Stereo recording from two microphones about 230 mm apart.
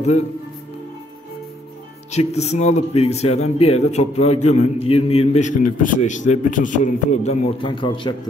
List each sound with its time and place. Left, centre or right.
2.0 s a man's voice: left